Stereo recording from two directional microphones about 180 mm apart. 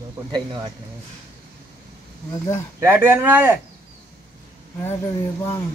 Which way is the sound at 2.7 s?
10° right (ahead or behind).